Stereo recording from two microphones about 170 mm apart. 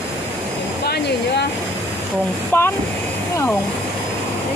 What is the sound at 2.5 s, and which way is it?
Speech, 10° left (ahead or behind).